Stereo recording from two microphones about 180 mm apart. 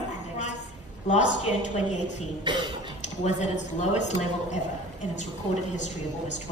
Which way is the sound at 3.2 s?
40° left (ahead or behind).